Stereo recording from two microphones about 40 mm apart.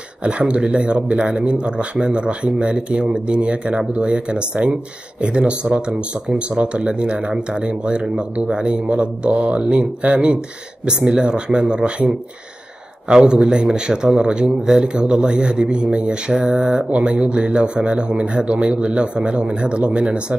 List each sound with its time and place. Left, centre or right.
0.2 s a man's voice: right
13.1 s a man's voice: right